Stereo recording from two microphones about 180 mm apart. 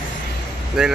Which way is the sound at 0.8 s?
5° right (ahead or behind).